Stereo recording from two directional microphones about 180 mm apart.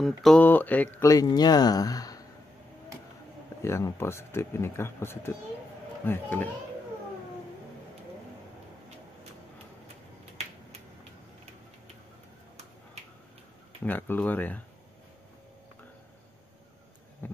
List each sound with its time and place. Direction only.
0.0 s speech: centre (ahead or behind); by 2.2 s 20° left (ahead or behind)
3.6 s speech: 15° left (ahead or behind)
13.8 s speech: 10° left (ahead or behind)
17.2 s a sound: 10° left (ahead or behind)